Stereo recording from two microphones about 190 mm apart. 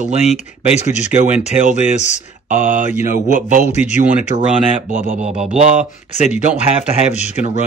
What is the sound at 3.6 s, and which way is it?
Speech, 35° left (ahead or behind).